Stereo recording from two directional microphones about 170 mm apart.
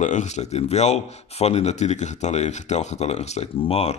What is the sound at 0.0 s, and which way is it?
Speech, 45° left (ahead or behind).